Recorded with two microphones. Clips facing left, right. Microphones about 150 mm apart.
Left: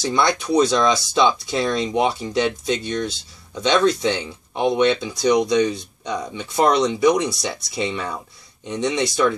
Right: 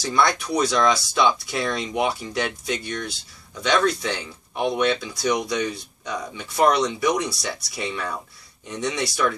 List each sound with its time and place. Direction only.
0.0 s speech: 20° left (ahead or behind)